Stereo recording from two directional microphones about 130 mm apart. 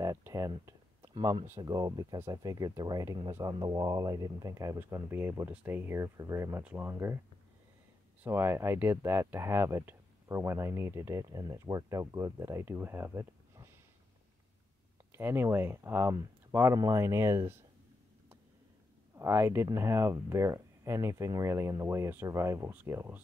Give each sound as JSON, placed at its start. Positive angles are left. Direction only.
{"t": 0.0, "sound": "a sound", "side_deg": -25}
{"t": 1.1, "sound": "speech", "side_deg": -35}
{"t": 8.2, "sound": "speech", "side_deg": -15}
{"t": 15.1, "sound": "speech", "side_deg": -20}
{"t": 19.1, "sound": "speech", "side_deg": -20}